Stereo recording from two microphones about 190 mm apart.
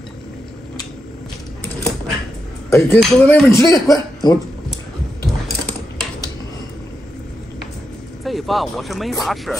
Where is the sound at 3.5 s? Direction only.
15° left (ahead or behind).